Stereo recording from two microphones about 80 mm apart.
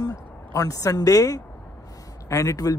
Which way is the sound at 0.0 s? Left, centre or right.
Left.